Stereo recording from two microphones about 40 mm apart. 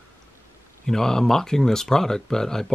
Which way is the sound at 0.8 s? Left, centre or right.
Centre.